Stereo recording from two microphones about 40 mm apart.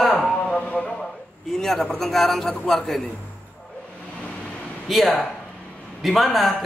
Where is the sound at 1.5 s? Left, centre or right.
Centre.